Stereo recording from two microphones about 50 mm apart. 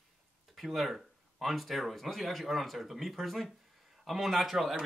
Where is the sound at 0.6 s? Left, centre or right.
Centre.